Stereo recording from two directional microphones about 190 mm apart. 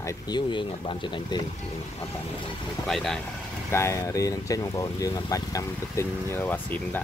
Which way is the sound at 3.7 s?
15° left (ahead or behind).